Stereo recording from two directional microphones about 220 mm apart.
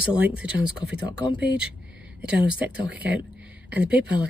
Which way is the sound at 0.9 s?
50° right (ahead or behind).